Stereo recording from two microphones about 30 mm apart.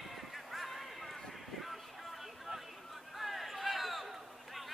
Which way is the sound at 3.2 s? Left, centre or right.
Centre.